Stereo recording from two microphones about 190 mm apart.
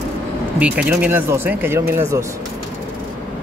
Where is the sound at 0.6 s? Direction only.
5° right (ahead or behind).